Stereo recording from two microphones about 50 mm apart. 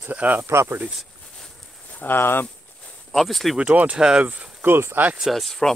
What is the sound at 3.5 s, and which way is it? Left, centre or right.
Speech, right.